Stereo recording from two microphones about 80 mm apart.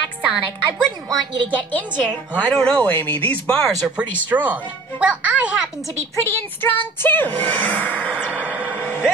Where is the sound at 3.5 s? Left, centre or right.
Centre.